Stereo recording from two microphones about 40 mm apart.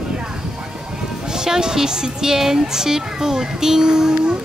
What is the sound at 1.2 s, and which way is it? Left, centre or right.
Speech, centre.